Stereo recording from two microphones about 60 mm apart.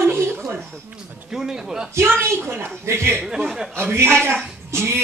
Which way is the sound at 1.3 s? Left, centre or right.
Centre.